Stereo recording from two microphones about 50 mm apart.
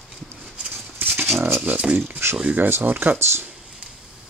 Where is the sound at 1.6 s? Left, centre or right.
Right.